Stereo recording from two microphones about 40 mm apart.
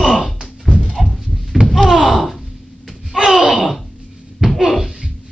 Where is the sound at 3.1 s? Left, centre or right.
Centre.